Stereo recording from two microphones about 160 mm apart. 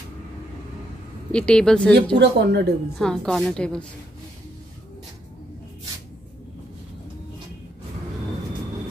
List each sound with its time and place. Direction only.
1.3 s a woman's voice: 5° left (ahead or behind)
2.1 s speech: 90° right
3.0 s a woman's voice: 5° left (ahead or behind)